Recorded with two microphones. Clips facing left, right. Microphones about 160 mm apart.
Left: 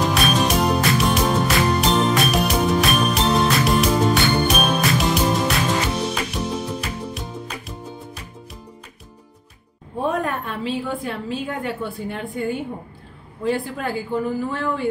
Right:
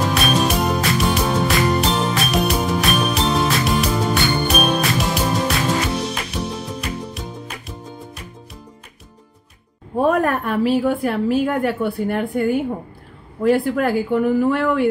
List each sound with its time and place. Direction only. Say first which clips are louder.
0.0 s music: right 1 dB; centre (ahead or behind)
10.0 s a sound: right 5 dB; 70° right (ahead or behind)
10.7 s a woman's voice: right 6 dB; 75° right (ahead or behind)